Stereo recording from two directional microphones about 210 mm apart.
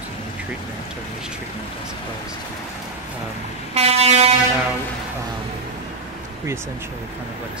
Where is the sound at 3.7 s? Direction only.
30° right (ahead or behind).